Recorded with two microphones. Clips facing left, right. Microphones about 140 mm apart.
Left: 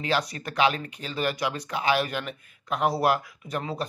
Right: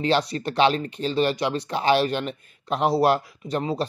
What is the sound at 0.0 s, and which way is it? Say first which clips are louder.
Speech: right 5 dB; 30° right (ahead or behind).